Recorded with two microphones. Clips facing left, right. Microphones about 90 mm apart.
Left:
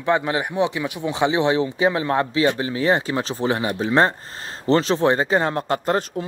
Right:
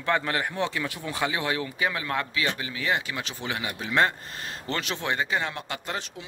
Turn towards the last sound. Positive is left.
turn(degrees=45)  # may be behind; listen again after turning